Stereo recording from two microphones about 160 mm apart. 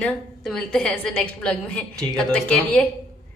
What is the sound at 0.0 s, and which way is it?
Speech, 5° left (ahead or behind).